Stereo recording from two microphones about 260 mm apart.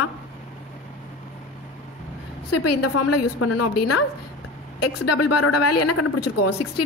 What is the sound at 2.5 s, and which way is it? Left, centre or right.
Speech, left.